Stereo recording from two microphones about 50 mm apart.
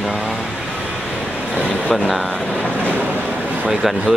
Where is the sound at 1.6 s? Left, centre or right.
Left.